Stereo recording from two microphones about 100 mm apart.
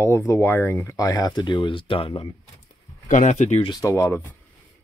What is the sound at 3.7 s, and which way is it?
Speech, 35° left (ahead or behind).